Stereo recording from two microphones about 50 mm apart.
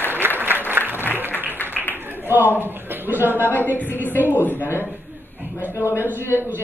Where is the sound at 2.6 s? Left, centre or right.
Right.